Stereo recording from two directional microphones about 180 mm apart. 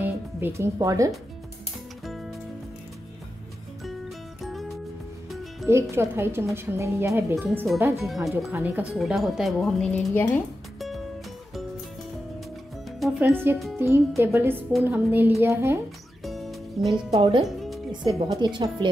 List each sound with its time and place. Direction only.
0.0 s speech: 15° right (ahead or behind)
4.4 s music: centre (ahead or behind)
5.7 s speech: 15° right (ahead or behind)
8.1 s a woman's voice: centre (ahead or behind)
13.2 s speech: 10° right (ahead or behind)
16.3 s music: centre (ahead or behind)
16.9 s a woman's voice: 30° right (ahead or behind)